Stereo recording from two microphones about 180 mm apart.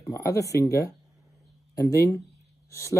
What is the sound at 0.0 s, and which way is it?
Speech, 15° left (ahead or behind).